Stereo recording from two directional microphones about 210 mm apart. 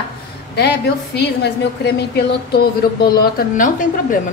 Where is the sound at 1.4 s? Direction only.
50° left (ahead or behind).